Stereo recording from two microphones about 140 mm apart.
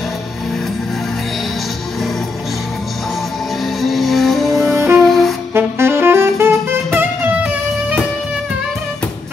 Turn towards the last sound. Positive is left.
turn(degrees=-10)  # may be behind; listen again after turning